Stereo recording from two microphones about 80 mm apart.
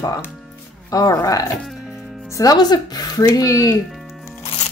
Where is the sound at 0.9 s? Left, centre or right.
Left.